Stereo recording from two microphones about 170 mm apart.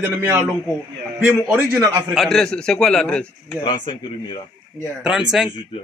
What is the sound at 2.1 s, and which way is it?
Speech, centre (ahead or behind).